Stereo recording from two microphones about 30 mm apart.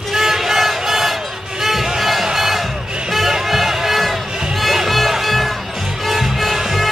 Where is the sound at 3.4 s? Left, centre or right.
Centre.